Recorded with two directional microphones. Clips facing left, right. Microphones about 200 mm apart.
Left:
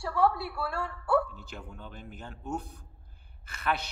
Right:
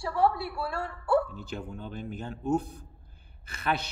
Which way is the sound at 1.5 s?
25° right (ahead or behind).